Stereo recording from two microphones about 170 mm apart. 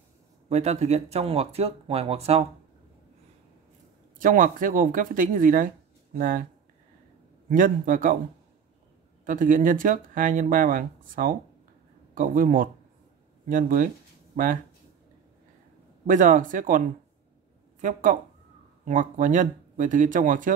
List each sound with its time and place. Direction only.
0.5 s speech: 40° right (ahead or behind)
4.2 s speech: 50° right (ahead or behind)
7.4 s speech: 50° right (ahead or behind)
9.2 s speech: 50° right (ahead or behind)
16.1 s speech: 50° right (ahead or behind)
18.9 s speech: 50° right (ahead or behind)